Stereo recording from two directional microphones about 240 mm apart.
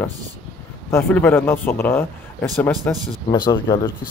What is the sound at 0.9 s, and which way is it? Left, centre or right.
Speech, centre.